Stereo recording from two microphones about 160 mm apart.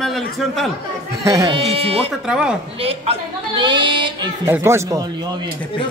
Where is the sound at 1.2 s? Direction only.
25° right (ahead or behind).